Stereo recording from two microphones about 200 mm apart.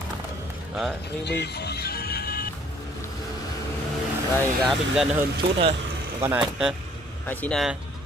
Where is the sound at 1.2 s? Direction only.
55° left (ahead or behind).